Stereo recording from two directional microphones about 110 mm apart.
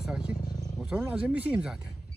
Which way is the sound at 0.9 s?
15° right (ahead or behind).